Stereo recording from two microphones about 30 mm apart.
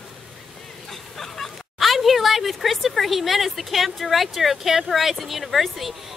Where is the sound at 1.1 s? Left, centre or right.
Centre.